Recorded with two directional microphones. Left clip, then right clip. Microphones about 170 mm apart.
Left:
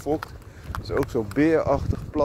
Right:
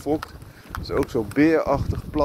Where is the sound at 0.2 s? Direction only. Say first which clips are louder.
Right 1 dB; 90° left.